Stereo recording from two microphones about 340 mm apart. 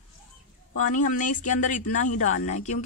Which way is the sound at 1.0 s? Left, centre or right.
Left.